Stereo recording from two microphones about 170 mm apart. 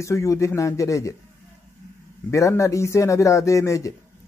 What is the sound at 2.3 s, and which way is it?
A man's voice, 15° left (ahead or behind).